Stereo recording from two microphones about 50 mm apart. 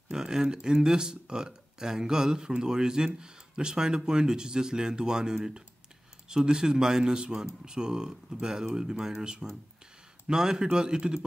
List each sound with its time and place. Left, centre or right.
0.1 s speech: centre